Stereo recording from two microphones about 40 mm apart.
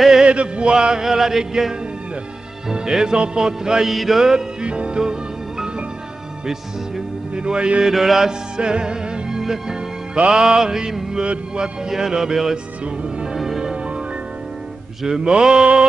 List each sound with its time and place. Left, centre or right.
0.2 s chant: right
1.0 s music: centre
2.7 s music: centre
3.8 s music: centre
4.6 s music: right
7.3 s music: right
7.8 s music: centre
9.4 s music: centre
10.1 s music: right
11.9 s music: centre
15.0 s music: centre